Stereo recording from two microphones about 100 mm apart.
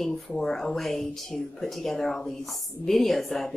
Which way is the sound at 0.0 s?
5° left (ahead or behind).